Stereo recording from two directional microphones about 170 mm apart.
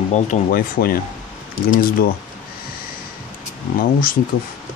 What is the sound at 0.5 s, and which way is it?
Speech, 60° left (ahead or behind).